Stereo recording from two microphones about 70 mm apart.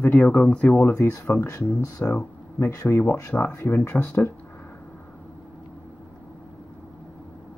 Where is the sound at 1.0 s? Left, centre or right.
Left.